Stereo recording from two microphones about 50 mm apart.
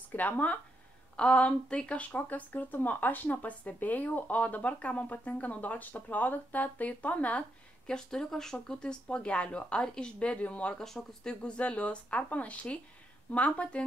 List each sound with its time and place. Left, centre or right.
0.1 s speech: left
1.1 s speech: left
7.8 s speech: centre
10.8 s speech: centre
11.2 s speech: left